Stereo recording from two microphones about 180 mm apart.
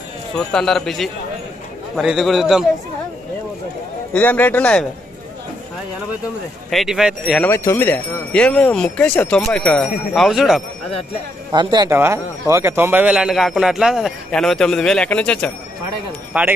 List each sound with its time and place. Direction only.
0.5 s a man's voice: 5° left (ahead or behind)
4.1 s speech: 10° left (ahead or behind)
6.7 s a man's voice: centre (ahead or behind)
7.4 s a man's voice: 15° left (ahead or behind)
11.5 s a man's voice: 20° right (ahead or behind); by 15.5 s 5° left (ahead or behind)
16.3 s speech: 10° right (ahead or behind)